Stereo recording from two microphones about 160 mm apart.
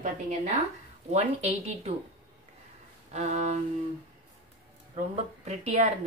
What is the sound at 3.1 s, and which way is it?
Speech, 45° right (ahead or behind).